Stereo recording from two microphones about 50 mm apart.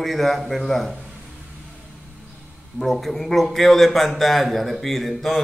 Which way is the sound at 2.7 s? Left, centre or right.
Centre.